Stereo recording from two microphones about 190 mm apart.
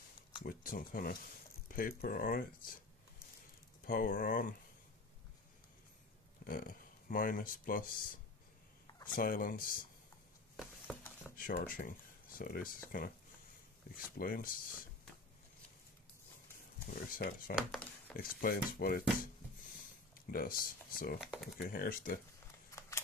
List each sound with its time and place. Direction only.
0.5 s speech: 50° left (ahead or behind)
3.8 s speech: 50° left (ahead or behind)
6.4 s speech: 45° left (ahead or behind)
10.5 s a sound: 5° left (ahead or behind)
11.3 s speech: 50° left (ahead or behind)
17.1 s speech: 45° left (ahead or behind)
17.6 s speech: centre (ahead or behind)
18.3 s speech: 50° left (ahead or behind)
20.2 s speech: 50° left (ahead or behind)
21.2 s speech: centre (ahead or behind)
21.5 s speech: 50° left (ahead or behind)
22.8 s a sound: 15° left (ahead or behind)